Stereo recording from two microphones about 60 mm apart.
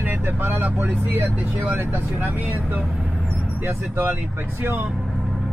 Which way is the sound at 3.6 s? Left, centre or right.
Right.